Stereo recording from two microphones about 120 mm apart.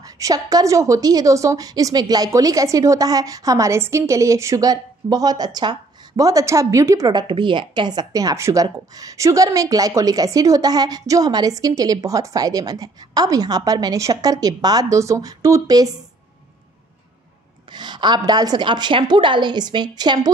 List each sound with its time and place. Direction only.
0.0 s a woman's voice: 30° right (ahead or behind)
17.6 s a woman's voice: 40° right (ahead or behind)